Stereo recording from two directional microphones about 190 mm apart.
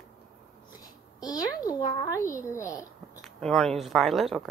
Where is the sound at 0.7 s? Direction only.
20° left (ahead or behind).